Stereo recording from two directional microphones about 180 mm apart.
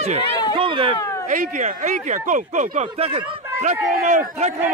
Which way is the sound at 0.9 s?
20° left (ahead or behind).